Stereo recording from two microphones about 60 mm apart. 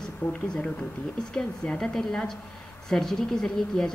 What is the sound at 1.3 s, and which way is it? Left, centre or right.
Speech, centre.